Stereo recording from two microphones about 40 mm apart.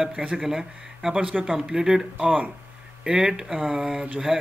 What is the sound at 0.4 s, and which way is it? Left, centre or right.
Speech, centre.